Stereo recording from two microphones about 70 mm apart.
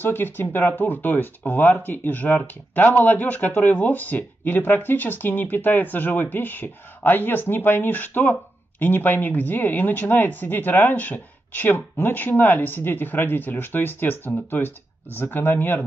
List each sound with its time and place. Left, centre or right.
0.0 s speech: left